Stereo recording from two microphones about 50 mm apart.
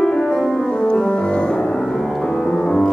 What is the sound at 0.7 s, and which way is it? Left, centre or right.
Music, centre.